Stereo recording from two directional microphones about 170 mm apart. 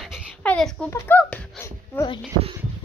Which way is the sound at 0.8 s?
15° left (ahead or behind).